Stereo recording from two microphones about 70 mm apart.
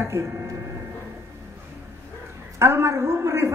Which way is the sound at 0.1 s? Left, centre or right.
Right.